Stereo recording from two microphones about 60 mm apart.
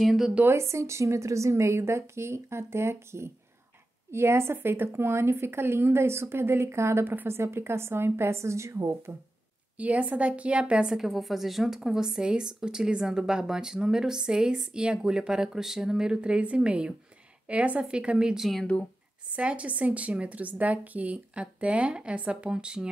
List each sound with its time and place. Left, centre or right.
0.0 s speech: centre
0.5 s a woman's voice: right
9.8 s a woman's voice: right
11.0 s a woman's voice: centre